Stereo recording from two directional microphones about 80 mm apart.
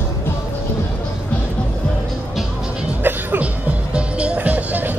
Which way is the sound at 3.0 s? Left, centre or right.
Right.